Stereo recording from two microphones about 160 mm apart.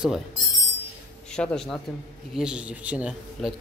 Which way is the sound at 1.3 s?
5° left (ahead or behind).